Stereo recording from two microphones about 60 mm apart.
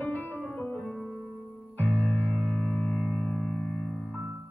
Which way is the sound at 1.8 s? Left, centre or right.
Left.